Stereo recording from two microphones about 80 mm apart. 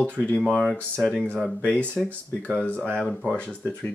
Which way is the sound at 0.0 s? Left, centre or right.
Centre.